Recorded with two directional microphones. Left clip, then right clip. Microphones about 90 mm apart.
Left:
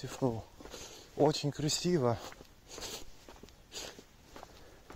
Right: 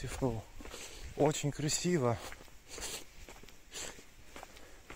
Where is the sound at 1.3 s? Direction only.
25° left (ahead or behind).